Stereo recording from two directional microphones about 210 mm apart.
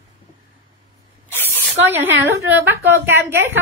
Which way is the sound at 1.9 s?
10° right (ahead or behind).